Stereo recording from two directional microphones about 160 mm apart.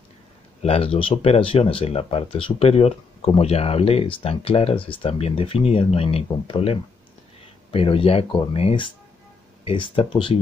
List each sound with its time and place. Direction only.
0.6 s speech: 40° left (ahead or behind)